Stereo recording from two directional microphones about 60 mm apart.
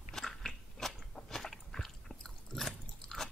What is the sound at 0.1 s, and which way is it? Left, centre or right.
Biting, centre.